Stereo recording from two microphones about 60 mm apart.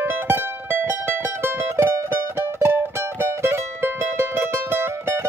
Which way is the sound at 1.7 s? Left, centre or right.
Right.